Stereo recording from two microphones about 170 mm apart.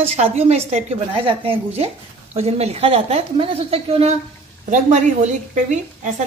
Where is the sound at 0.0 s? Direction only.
35° right (ahead or behind).